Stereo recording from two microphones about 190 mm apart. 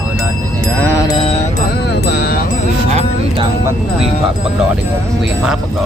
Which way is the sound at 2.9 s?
35° right (ahead or behind).